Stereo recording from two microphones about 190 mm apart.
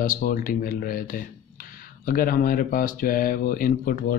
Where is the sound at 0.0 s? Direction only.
45° left (ahead or behind).